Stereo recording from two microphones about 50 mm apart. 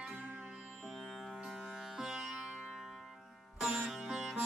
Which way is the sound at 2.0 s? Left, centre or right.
Centre.